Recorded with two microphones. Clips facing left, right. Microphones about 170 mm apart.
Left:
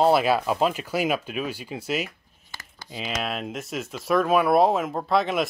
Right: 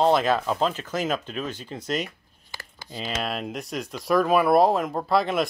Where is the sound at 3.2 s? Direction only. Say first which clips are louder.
Even; centre (ahead or behind).